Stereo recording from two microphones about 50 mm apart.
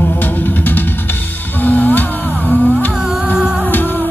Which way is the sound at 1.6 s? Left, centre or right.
Left.